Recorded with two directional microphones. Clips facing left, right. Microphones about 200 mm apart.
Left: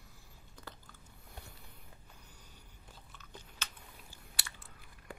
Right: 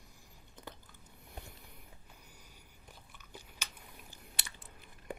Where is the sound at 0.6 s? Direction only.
20° right (ahead or behind).